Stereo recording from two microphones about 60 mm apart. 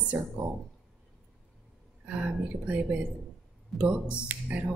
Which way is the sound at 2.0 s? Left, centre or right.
Right.